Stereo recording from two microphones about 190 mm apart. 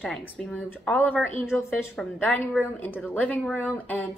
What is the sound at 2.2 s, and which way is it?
A woman's voice, 10° left (ahead or behind).